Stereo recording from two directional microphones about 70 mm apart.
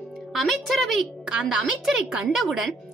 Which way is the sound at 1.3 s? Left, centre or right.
Centre.